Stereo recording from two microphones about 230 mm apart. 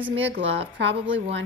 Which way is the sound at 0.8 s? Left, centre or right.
Right.